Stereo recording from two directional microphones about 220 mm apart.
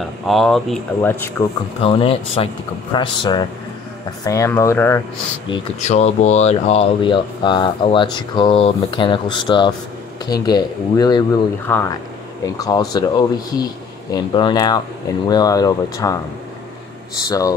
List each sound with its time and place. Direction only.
0.3 s speech: centre (ahead or behind)
1.8 s speech: 25° left (ahead or behind)
5.5 s speech: 30° left (ahead or behind); by 16.2 s 15° left (ahead or behind)
17.3 s speech: 15° left (ahead or behind)